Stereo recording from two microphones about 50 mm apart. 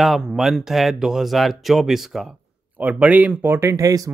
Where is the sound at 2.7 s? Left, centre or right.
Right.